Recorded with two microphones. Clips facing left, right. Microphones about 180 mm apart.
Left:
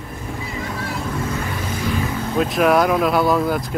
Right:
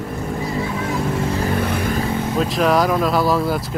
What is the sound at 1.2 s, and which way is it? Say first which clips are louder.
Vehicle: right 4 dB; 30° right (ahead or behind).